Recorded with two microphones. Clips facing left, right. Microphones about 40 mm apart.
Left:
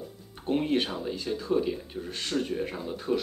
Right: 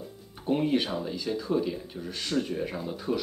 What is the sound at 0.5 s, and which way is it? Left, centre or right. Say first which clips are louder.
Speech: right 1 dB; centre.